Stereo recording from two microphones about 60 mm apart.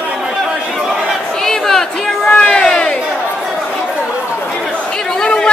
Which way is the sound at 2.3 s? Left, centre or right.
Centre.